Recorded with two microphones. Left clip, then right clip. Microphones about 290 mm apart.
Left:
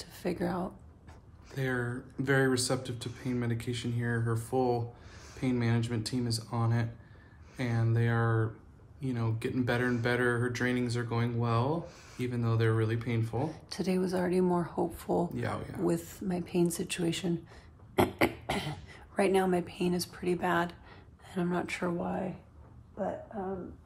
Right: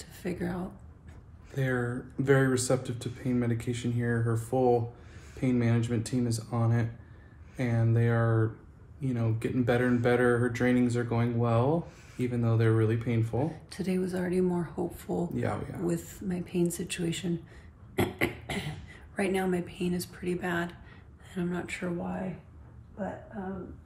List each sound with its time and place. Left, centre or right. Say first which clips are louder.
0.0 s speech: left 2 dB; centre
1.5 s speech: right 2 dB; centre
13.5 s speech: left 1 dB; centre
15.2 s speech: right 3 dB; centre
15.8 s speech: left 1 dB; centre